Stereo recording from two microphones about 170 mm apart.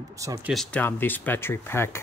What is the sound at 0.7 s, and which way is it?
Speech, 10° left (ahead or behind).